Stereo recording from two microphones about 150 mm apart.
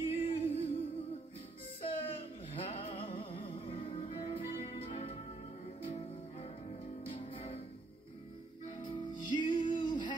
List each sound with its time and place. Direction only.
0.0 s music: 40° left (ahead or behind)
1.8 s music: 35° left (ahead or behind)
7.1 s music: 40° left (ahead or behind)
8.6 s music: 30° left (ahead or behind)